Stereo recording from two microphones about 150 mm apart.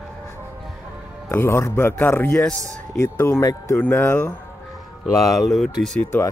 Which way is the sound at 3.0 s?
15° left (ahead or behind).